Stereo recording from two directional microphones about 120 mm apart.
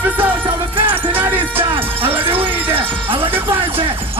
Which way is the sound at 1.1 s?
15° right (ahead or behind).